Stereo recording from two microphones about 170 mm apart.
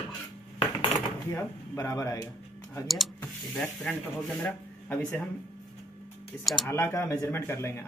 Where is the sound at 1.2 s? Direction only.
15° left (ahead or behind).